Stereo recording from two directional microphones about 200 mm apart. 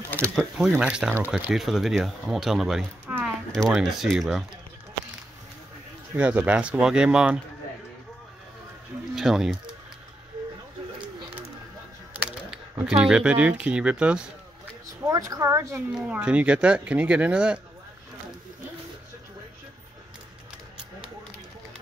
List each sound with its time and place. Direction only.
0.1 s speech: 5° left (ahead or behind)
0.6 s speech: 5° right (ahead or behind)
6.1 s speech: 5° right (ahead or behind)
9.1 s speech: centre (ahead or behind)
12.1 s speech: 5° right (ahead or behind)
15.0 s a woman's voice: 15° right (ahead or behind)